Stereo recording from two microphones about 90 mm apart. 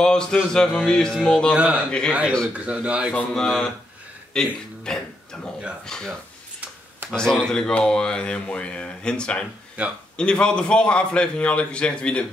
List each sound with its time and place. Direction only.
0.0 s speech: 5° left (ahead or behind)
1.5 s speech: 10° right (ahead or behind)
1.9 s speech: 10° left (ahead or behind)
2.5 s speech: 15° right (ahead or behind)
3.3 s speech: 5° left (ahead or behind)
9.8 s speech: 15° right (ahead or behind)
10.1 s speech: 10° left (ahead or behind)